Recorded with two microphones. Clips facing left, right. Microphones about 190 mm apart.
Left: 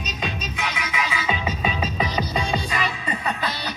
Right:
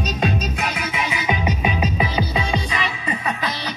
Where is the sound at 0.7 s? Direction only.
25° right (ahead or behind).